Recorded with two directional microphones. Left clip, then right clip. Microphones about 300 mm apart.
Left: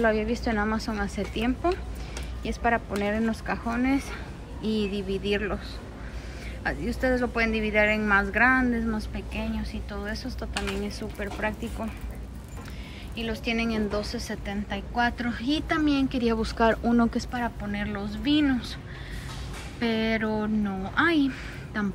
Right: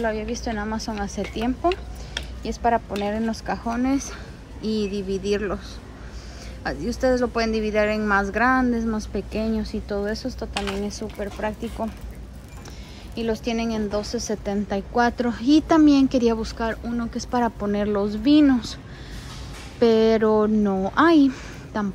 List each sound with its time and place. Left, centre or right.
0.0 s a woman's voice: centre
6.6 s a woman's voice: centre
13.1 s a woman's voice: centre
17.3 s a woman's voice: centre
19.8 s a woman's voice: centre